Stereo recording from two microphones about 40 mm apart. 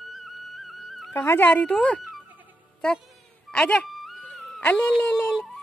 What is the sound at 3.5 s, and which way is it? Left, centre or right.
Speech, centre.